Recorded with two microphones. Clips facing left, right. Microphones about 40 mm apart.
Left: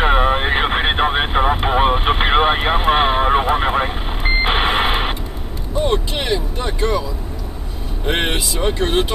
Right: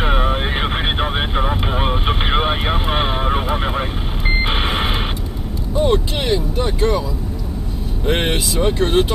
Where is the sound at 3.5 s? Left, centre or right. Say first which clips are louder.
Left 4 dB; centre.